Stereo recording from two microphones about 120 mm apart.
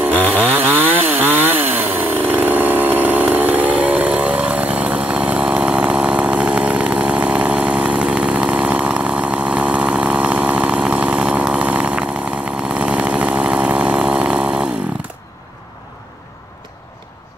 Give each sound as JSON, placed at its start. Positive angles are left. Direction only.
{"t": 0.1, "sound": "chainsaw", "side_deg": 15}
{"t": 0.7, "sound": "chainsaw", "side_deg": -15}